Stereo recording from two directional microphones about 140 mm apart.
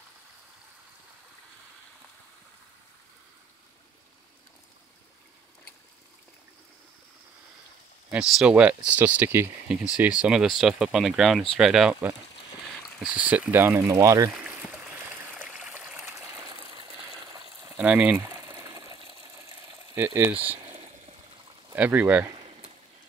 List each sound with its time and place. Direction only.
8.1 s speech: 10° right (ahead or behind)
13.0 s speech: 10° right (ahead or behind)
15.5 s water: 15° right (ahead or behind)
16.7 s water: 30° right (ahead or behind)
17.7 s water: 10° right (ahead or behind)
20.0 s speech: 20° right (ahead or behind)
21.7 s speech: 10° right (ahead or behind)